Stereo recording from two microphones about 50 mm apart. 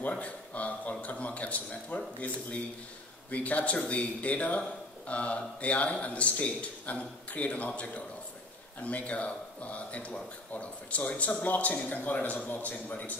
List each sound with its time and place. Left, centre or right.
0.2 s speech: left